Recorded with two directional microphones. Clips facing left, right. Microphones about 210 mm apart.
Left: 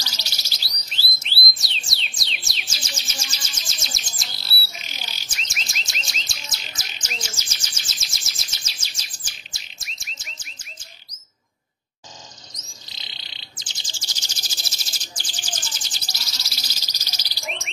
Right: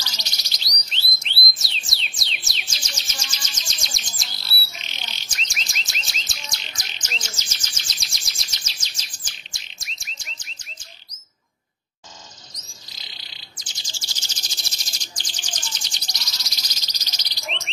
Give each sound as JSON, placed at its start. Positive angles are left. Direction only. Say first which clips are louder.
{"t": 0.1, "sound": "bird", "louder": "even", "side_deg": 5}
{"t": 0.8, "sound": "music", "louder": "even", "side_deg": 5}
{"t": 2.7, "sound": "bird", "louder": "left 3 dB", "side_deg": 10}
{"t": 13.6, "sound": "bird", "louder": "even", "side_deg": 20}
{"t": 14.6, "sound": "bird", "louder": "left 1 dB", "side_deg": 5}